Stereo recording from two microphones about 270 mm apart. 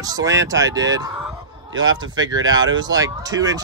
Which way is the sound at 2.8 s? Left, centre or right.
Centre.